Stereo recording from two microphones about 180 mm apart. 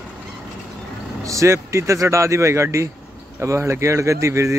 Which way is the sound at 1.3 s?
15° right (ahead or behind).